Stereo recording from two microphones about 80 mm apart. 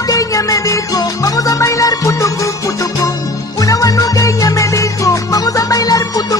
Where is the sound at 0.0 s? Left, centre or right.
Left.